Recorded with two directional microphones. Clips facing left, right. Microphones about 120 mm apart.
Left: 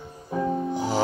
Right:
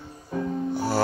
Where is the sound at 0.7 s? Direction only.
15° left (ahead or behind).